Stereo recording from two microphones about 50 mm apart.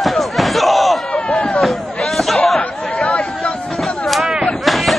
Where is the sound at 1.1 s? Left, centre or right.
Left.